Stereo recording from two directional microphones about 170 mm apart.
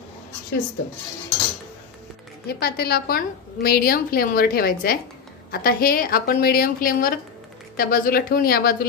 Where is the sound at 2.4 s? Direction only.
65° left (ahead or behind).